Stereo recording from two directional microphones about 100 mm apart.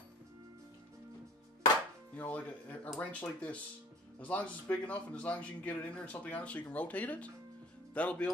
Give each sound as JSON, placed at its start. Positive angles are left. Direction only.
{"t": 2.1, "sound": "speech", "side_deg": 15}